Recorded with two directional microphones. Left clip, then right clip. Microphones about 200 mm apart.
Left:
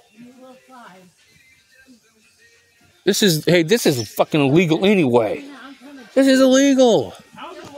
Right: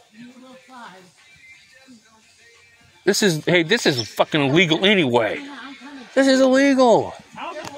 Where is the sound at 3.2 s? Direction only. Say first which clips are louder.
Left 3 dB; 60° left (ahead or behind).